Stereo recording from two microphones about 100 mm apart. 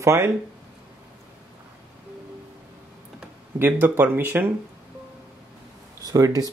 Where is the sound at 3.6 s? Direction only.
20° right (ahead or behind).